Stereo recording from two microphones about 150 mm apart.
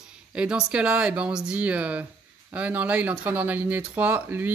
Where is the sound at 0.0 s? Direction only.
5° right (ahead or behind).